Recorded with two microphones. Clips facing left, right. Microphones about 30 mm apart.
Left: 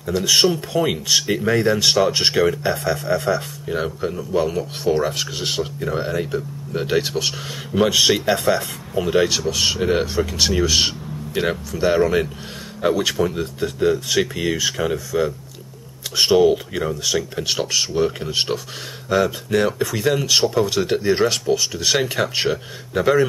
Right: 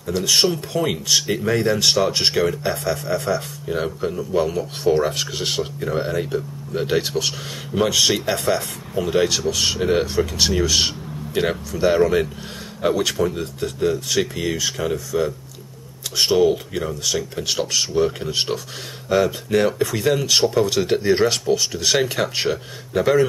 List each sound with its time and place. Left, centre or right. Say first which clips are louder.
0.0 s speech: left 2 dB; centre